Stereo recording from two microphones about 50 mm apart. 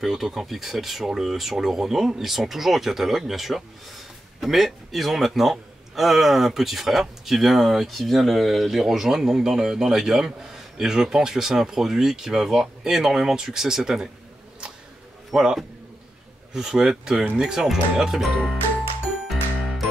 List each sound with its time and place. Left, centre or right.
0.0 s speech: centre
15.3 s speech: centre